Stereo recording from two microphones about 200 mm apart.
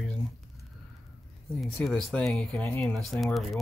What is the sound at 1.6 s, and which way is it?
Speech, centre (ahead or behind).